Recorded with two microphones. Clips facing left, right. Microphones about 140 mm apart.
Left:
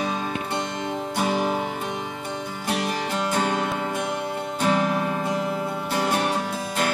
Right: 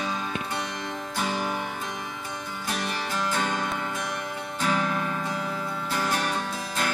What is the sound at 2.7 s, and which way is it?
Music, 65° left (ahead or behind).